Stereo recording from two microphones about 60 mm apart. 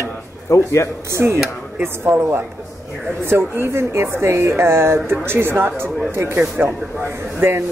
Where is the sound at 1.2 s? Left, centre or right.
Right.